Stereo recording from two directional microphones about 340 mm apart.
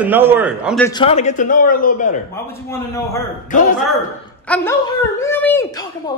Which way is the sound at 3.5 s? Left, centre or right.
Left.